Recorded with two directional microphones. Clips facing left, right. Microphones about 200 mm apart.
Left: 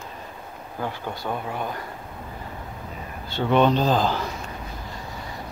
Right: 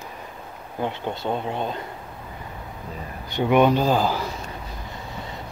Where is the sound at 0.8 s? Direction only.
25° right (ahead or behind).